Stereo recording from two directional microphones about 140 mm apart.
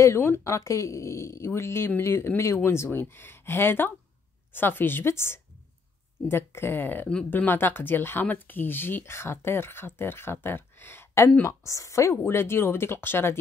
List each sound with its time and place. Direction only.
0.0 s speech: 20° left (ahead or behind)